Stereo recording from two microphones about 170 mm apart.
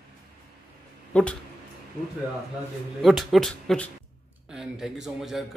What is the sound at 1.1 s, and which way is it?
Speech, 5° left (ahead or behind).